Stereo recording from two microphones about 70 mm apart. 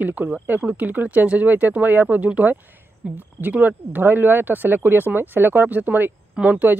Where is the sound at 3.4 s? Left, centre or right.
Right.